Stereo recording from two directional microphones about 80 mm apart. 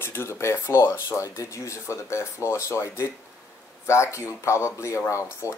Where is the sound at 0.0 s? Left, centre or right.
Left.